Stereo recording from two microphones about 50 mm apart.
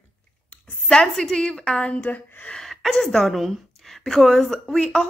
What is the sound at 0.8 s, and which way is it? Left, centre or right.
A woman's voice, centre.